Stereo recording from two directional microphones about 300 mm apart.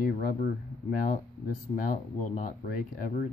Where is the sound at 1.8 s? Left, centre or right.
Left.